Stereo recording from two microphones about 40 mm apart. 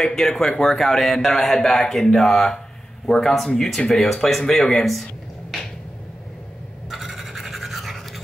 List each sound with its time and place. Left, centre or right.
0.0 s speech: centre
6.9 s toothbrush: centre